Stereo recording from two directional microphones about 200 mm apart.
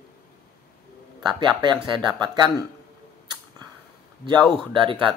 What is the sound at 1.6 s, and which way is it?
Speech, 20° right (ahead or behind).